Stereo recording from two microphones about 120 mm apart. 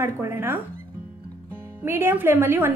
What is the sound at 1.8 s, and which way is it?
Speech, 20° right (ahead or behind).